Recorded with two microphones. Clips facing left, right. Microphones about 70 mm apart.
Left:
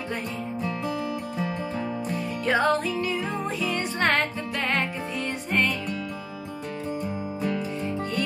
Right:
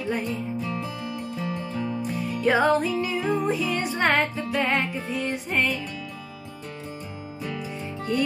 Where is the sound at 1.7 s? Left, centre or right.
Left.